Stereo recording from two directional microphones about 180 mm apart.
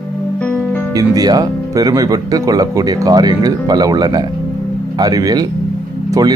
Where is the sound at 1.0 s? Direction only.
20° right (ahead or behind).